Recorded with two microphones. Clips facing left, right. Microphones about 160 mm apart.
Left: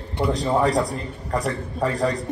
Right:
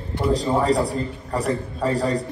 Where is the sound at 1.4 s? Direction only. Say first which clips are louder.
Right 1 dB; 30° right (ahead or behind).